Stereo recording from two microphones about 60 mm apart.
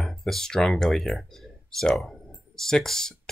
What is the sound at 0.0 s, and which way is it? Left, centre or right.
Speech, centre.